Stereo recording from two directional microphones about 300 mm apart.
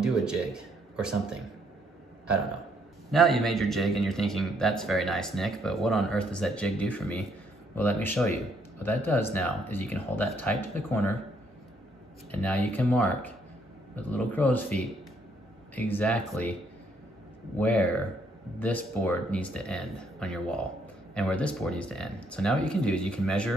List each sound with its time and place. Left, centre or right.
0.0 s speech: centre
3.1 s a man's voice: centre
12.3 s a man's voice: centre
17.6 s a man's voice: centre